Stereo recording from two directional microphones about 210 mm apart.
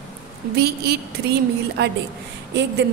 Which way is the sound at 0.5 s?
50° right (ahead or behind).